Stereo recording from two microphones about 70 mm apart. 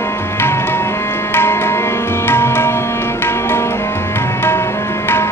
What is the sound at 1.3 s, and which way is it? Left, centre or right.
Music, left.